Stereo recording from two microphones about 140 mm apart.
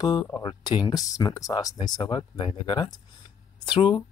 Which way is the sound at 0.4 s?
30° left (ahead or behind).